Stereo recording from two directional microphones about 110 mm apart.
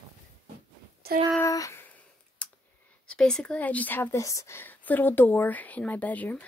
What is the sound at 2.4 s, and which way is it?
Clicking, 10° left (ahead or behind).